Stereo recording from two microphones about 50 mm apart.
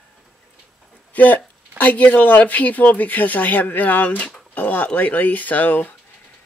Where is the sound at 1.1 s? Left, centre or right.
Left.